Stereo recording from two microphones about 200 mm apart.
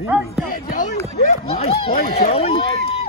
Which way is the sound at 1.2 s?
35° left (ahead or behind).